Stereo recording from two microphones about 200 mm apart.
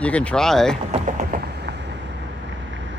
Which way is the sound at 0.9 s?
35° right (ahead or behind).